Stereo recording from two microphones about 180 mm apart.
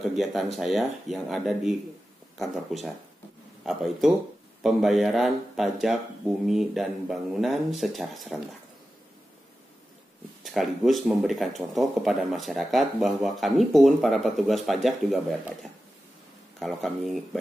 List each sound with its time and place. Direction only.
0.1 s speech: centre (ahead or behind)
10.4 s speech: centre (ahead or behind)
16.5 s speech: centre (ahead or behind)